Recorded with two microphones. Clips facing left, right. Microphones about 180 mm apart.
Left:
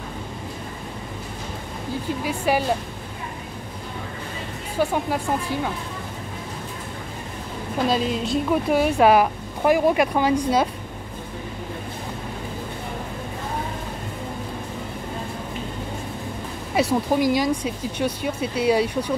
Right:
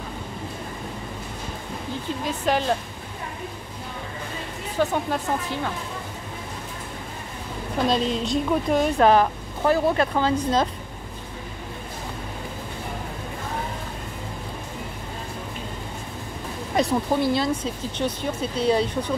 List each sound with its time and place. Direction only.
2.2 s a woman's voice: 10° left (ahead or behind)
4.7 s a woman's voice: 10° left (ahead or behind)
7.9 s a woman's voice: 5° left (ahead or behind)
16.7 s a woman's voice: 10° left (ahead or behind)